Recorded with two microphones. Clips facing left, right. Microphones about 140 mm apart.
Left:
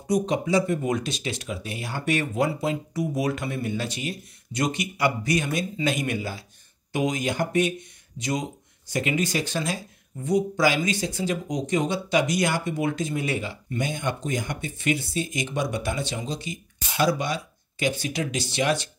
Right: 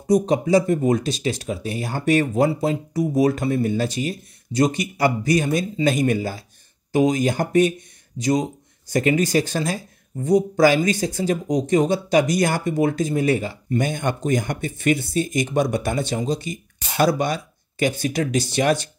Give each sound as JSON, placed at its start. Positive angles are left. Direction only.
{"t": 0.1, "sound": "speech", "side_deg": -40}